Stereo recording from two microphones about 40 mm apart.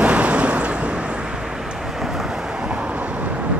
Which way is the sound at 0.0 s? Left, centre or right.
Right.